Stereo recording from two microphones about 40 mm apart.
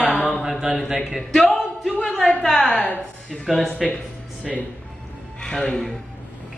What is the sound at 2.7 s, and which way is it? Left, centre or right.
Speech, left.